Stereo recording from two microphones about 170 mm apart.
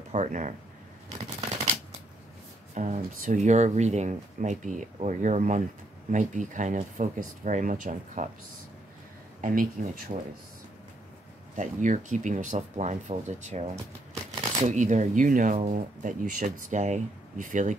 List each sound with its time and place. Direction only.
0.1 s speech: 45° right (ahead or behind)
2.7 s speech: 45° right (ahead or behind)
9.4 s speech: 55° right (ahead or behind)
11.5 s speech: 45° right (ahead or behind)
14.6 s speech: 45° right (ahead or behind)